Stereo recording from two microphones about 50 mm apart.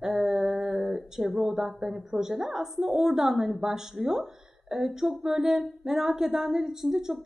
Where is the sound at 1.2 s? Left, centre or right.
Centre.